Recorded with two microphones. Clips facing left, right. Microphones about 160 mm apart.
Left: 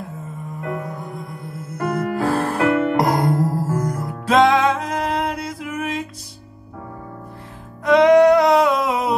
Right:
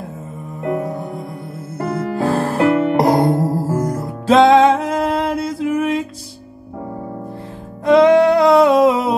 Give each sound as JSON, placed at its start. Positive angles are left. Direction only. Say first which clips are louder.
{"t": 0.6, "sound": "music", "louder": "right 7 dB", "side_deg": -30}
{"t": 7.8, "sound": "music", "louder": "right 1 dB", "side_deg": -30}